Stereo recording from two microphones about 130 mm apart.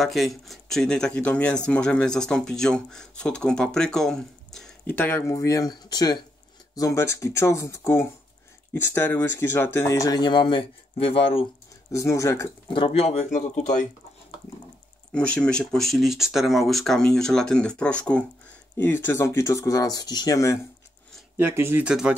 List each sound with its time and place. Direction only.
0.0 s speech: centre (ahead or behind)
5.2 s speech: 25° left (ahead or behind); by 11.4 s 45° left (ahead or behind)
11.9 s speech: 25° left (ahead or behind)
12.6 s speech: 40° left (ahead or behind); by 13.8 s 65° left (ahead or behind)
15.1 s speech: 10° left (ahead or behind); by 20.5 s 25° left (ahead or behind)
21.4 s speech: 20° right (ahead or behind)
21.8 s speech: 5° right (ahead or behind)